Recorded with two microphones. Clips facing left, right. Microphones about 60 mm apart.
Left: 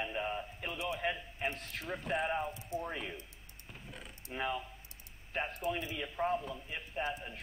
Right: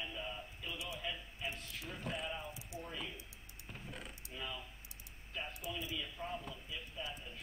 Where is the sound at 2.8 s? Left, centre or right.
Left.